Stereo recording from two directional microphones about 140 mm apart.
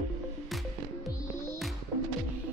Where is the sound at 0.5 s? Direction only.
Centre (ahead or behind).